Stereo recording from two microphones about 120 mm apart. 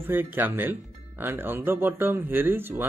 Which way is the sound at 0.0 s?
20° right (ahead or behind).